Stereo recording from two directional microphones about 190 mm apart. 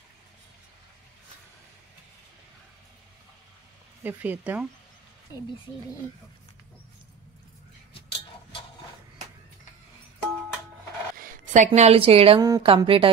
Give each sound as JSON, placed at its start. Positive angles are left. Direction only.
{"t": 4.0, "sound": "speech", "side_deg": -10}
{"t": 11.1, "sound": "a woman's voice", "side_deg": -40}
{"t": 12.4, "sound": "speech", "side_deg": -20}